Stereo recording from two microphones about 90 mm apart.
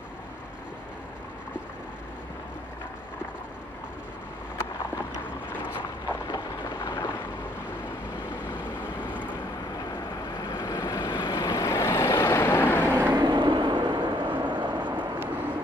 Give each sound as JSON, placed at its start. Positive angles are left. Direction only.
{"t": 6.3, "sound": "a sound", "side_deg": 50}
{"t": 10.5, "sound": "vehicle", "side_deg": 45}
{"t": 12.9, "sound": "vehicle", "side_deg": -20}
{"t": 13.2, "sound": "vehicle", "side_deg": -60}